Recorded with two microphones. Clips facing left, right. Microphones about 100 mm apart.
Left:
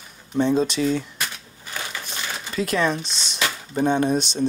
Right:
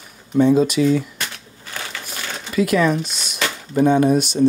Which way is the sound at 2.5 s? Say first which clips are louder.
Right 5 dB; 30° left (ahead or behind).